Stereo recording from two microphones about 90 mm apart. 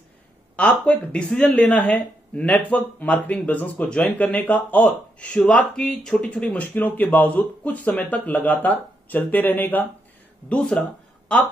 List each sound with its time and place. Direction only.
0.6 s speech: 15° left (ahead or behind)